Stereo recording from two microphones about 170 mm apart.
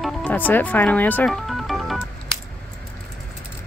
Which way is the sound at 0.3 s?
10° left (ahead or behind).